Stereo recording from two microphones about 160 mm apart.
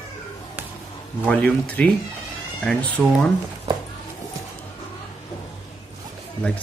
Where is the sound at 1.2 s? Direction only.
10° left (ahead or behind).